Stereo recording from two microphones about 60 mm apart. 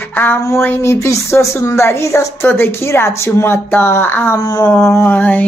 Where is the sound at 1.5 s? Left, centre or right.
Left.